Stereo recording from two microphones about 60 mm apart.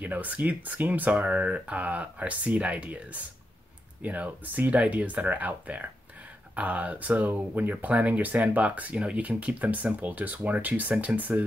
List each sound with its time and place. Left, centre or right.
0.0 s speech: right